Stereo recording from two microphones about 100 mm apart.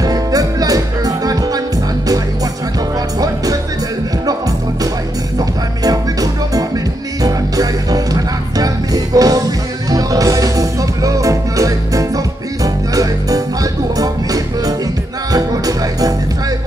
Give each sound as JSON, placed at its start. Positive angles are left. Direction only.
{"t": 0.0, "sound": "music", "side_deg": -35}
{"t": 5.4, "sound": "music", "side_deg": -35}